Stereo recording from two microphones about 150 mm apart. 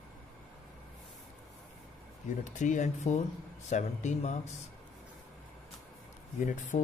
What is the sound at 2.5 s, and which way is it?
Speech, 55° left (ahead or behind).